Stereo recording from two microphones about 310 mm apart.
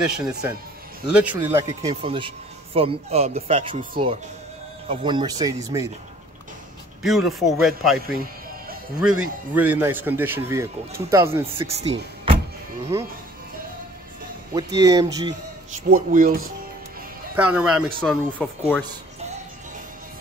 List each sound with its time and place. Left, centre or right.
0.1 s speech: centre
7.0 s speech: centre
9.2 s speech: centre
11.6 s speech: centre
14.5 s speech: centre
15.9 s speech: right
17.4 s speech: centre